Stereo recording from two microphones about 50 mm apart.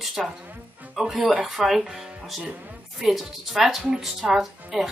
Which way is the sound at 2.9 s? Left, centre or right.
Centre.